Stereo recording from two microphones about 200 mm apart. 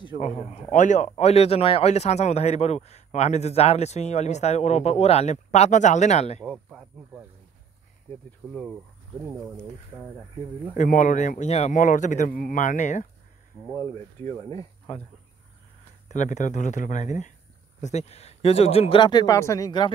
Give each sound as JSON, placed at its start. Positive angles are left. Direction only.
{"t": 0.3, "sound": "a man's voice", "side_deg": 30}
{"t": 6.4, "sound": "speech", "side_deg": 0}
{"t": 8.4, "sound": "speech", "side_deg": 0}
{"t": 10.8, "sound": "a man's voice", "side_deg": 40}
{"t": 13.7, "sound": "speech", "side_deg": 15}
{"t": 16.1, "sound": "a man's voice", "side_deg": 35}